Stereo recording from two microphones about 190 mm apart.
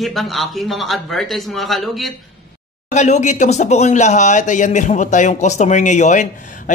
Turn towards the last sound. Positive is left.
turn(degrees=40)  # may be behind; listen again after turning